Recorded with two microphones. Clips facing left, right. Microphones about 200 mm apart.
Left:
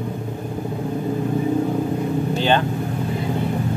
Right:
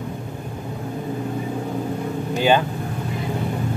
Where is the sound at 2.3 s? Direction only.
10° right (ahead or behind).